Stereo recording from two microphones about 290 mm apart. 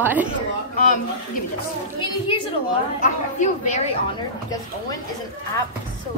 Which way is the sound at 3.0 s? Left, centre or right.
Left.